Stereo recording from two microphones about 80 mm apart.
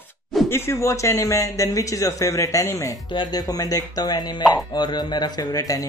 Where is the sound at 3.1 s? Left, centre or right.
Left.